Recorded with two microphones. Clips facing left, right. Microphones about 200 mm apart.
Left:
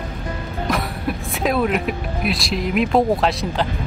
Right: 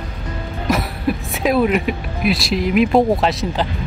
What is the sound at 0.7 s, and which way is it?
Speech, centre (ahead or behind).